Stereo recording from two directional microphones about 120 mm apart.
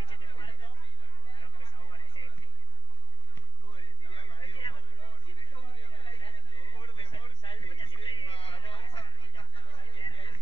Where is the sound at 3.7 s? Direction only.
50° left (ahead or behind).